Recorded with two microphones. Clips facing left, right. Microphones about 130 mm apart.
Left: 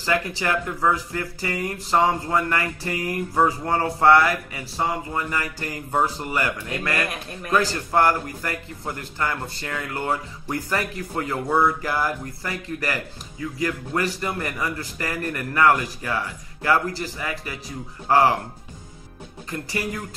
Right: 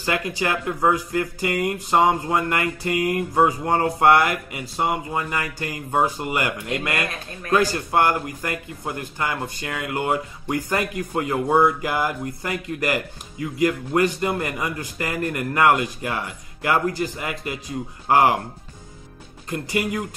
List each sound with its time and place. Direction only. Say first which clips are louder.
0.0 s a man's voice: even; 15° right (ahead or behind)
19.5 s a man's voice: right 4 dB; 20° right (ahead or behind)